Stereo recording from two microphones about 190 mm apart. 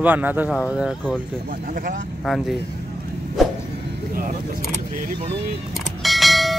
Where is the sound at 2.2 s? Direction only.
Centre (ahead or behind).